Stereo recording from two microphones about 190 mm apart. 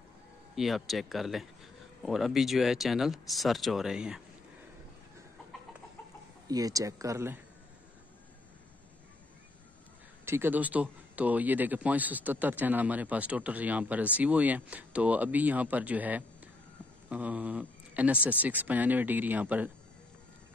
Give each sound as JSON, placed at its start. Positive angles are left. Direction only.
{"t": 0.6, "sound": "speech", "side_deg": 0}
{"t": 6.4, "sound": "speech", "side_deg": -20}
{"t": 10.2, "sound": "a woman's voice", "side_deg": -10}